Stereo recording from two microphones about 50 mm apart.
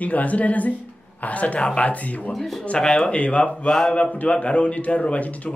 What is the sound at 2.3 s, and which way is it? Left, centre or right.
Speech, centre.